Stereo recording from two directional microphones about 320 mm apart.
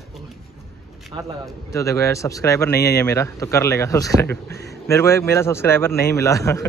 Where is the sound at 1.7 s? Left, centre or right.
Centre.